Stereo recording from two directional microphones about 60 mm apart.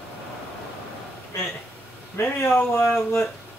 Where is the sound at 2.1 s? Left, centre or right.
Left.